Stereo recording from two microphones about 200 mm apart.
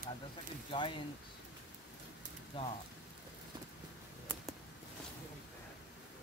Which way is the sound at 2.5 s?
25° left (ahead or behind).